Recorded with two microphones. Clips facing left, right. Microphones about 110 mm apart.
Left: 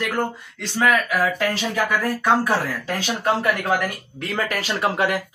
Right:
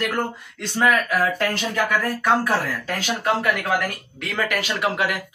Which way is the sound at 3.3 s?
25° left (ahead or behind).